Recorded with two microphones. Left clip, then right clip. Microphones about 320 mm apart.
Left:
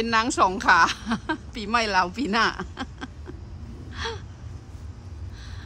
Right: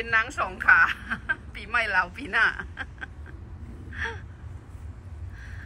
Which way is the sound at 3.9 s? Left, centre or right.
Centre.